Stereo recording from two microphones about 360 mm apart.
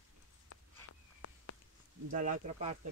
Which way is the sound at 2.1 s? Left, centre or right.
Right.